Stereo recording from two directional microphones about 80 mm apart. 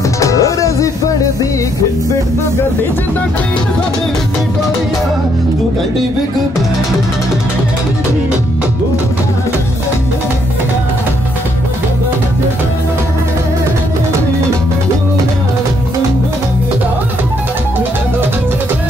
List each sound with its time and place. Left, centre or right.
0.2 s music: left